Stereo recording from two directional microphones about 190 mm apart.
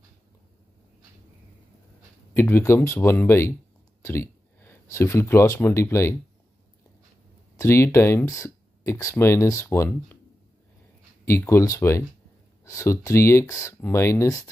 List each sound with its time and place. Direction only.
2.3 s speech: 10° left (ahead or behind)
7.5 s speech: 15° left (ahead or behind)
11.2 s speech: 15° left (ahead or behind)